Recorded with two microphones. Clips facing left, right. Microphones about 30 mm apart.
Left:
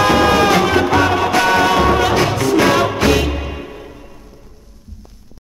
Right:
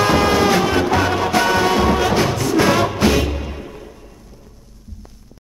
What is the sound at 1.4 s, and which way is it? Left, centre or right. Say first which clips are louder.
Music: left 3 dB; left.